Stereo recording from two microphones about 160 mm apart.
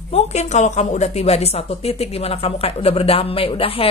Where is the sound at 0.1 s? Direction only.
45° left (ahead or behind).